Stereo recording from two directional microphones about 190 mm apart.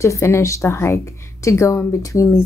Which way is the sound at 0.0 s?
15° left (ahead or behind).